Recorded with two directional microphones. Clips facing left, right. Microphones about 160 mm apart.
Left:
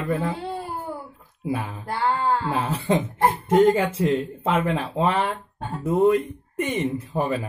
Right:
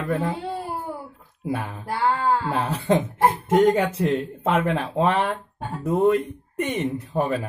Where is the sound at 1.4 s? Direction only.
Centre (ahead or behind).